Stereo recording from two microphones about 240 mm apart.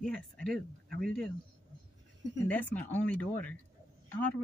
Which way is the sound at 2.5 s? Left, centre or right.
Centre.